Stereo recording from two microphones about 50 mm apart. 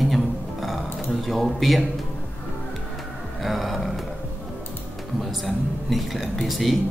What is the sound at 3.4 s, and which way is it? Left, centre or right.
Speech, centre.